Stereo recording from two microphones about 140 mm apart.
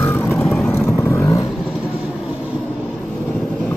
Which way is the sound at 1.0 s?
20° left (ahead or behind).